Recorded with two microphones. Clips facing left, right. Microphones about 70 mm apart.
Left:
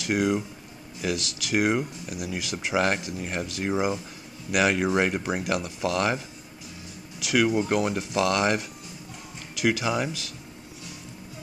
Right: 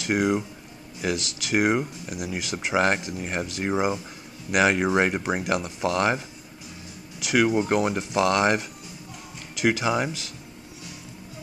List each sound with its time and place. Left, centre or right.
0.0 s speech: right